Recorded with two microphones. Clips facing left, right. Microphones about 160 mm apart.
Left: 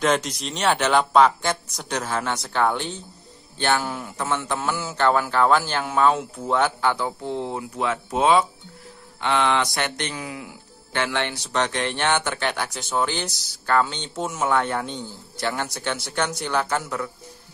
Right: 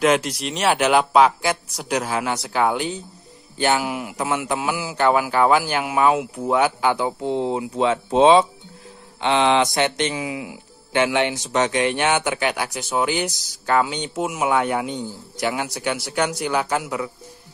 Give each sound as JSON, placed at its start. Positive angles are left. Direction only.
{"t": 0.0, "sound": "speech", "side_deg": -5}